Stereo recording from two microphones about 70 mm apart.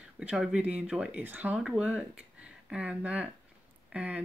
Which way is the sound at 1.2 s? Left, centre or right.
Right.